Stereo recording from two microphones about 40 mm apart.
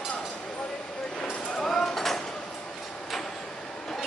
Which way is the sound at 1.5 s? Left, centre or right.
Centre.